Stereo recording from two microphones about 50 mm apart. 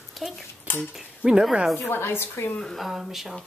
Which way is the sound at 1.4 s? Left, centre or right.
Centre.